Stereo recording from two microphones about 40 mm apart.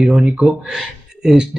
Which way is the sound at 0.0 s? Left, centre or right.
Centre.